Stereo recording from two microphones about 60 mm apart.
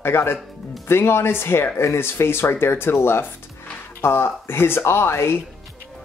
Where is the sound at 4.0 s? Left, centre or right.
Left.